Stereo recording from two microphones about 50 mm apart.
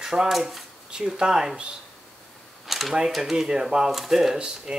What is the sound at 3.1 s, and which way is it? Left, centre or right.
Speech, centre.